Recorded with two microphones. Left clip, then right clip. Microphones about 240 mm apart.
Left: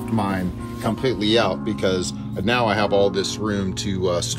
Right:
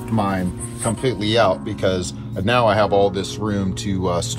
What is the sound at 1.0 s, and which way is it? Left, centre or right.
Speech, right.